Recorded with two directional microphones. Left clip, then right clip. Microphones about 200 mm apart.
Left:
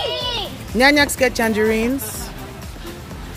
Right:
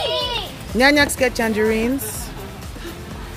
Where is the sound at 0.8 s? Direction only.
5° left (ahead or behind).